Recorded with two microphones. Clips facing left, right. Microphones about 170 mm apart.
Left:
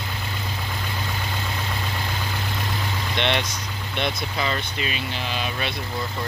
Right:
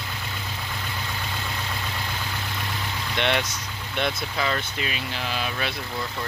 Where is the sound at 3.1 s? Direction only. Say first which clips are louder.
Even; 5° right (ahead or behind).